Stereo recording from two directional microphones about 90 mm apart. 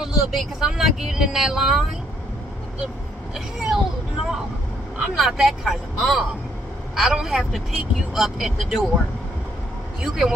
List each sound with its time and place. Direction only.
0.0 s speech: 5° right (ahead or behind)
3.3 s speech: 5° right (ahead or behind)
4.9 s speech: centre (ahead or behind)
10.0 s a man's voice: 5° right (ahead or behind)